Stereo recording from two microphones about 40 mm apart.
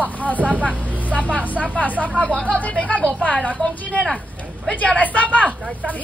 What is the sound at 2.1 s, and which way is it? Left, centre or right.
Speech, left.